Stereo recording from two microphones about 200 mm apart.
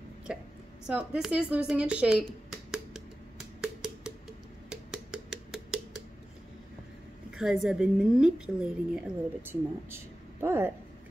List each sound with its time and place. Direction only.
0.3 s a woman's voice: 5° right (ahead or behind)
1.7 s a sound: 5° right (ahead or behind)
7.3 s a woman's voice: centre (ahead or behind)